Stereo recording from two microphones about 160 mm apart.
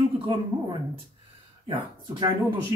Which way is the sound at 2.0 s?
30° right (ahead or behind).